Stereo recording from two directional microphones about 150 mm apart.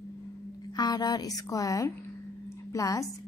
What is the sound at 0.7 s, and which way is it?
A woman's voice, 25° left (ahead or behind).